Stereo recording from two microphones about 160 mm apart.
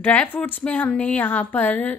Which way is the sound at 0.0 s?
10° left (ahead or behind).